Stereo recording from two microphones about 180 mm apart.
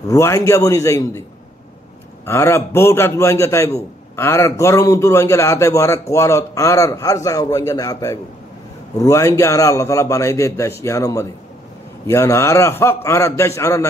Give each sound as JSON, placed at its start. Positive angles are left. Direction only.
{"t": 0.1, "sound": "a man's voice", "side_deg": 15}
{"t": 2.2, "sound": "a man's voice", "side_deg": 15}